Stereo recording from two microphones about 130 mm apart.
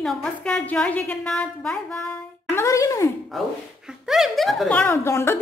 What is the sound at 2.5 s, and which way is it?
Speech, 20° left (ahead or behind).